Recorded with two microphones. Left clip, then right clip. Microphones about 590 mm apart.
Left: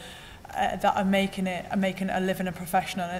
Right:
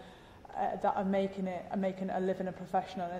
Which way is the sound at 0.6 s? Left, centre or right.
Left.